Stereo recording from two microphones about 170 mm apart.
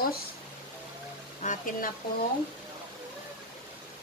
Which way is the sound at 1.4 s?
45° left (ahead or behind).